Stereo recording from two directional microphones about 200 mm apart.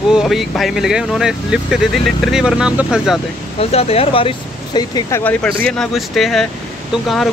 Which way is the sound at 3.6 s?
30° left (ahead or behind).